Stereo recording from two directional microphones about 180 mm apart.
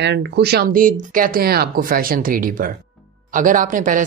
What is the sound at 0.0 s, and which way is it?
A woman's voice, 70° right (ahead or behind).